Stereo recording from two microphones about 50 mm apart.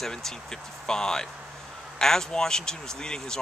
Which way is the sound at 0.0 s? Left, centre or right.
Centre.